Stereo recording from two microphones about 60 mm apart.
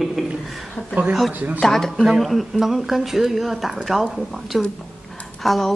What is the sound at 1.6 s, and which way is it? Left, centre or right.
Speech, centre.